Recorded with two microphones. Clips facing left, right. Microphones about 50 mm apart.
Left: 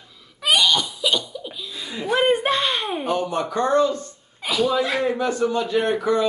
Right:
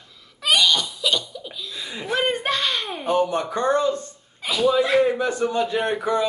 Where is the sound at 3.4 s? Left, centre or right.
Right.